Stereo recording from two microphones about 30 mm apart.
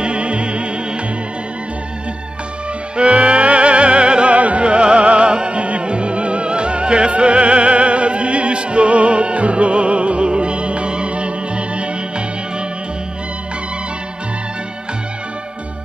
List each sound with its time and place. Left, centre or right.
0.0 s music: right
3.0 s music: right